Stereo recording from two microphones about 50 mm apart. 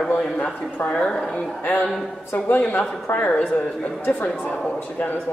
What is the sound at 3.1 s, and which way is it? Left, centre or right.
Speech, left.